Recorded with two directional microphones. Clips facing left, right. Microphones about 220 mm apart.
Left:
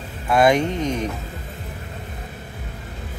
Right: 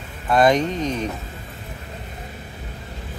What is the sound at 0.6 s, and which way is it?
Speech, 15° right (ahead or behind).